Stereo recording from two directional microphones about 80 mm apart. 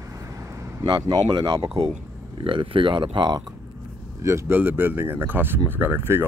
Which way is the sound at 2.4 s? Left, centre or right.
Right.